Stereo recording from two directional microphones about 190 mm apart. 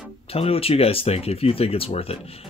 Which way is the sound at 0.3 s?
30° left (ahead or behind).